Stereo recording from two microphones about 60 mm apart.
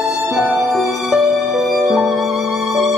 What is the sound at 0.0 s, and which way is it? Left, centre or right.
Music, centre.